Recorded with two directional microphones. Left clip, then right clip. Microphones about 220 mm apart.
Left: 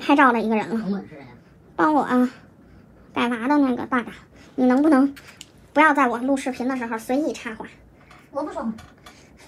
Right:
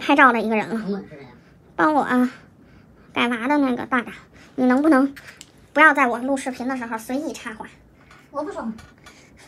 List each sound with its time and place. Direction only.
0.0 s a woman's voice: 25° right (ahead or behind)